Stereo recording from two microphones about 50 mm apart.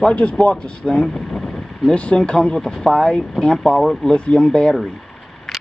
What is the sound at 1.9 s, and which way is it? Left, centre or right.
Speech, left.